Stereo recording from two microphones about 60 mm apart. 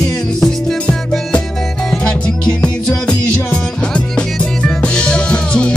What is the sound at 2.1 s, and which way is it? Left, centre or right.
Music, centre.